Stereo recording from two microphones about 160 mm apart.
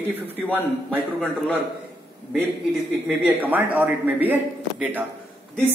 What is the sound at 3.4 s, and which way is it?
Speech, 10° right (ahead or behind).